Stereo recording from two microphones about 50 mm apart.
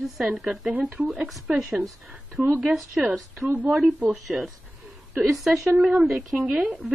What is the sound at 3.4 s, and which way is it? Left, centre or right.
Speech, right.